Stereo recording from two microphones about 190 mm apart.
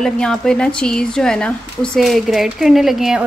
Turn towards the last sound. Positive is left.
turn(degrees=0)  # may be behind; listen again after turning